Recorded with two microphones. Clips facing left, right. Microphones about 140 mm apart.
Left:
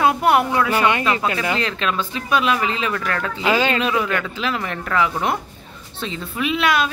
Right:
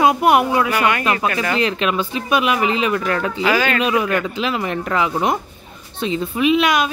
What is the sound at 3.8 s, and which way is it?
A woman's voice, 15° right (ahead or behind).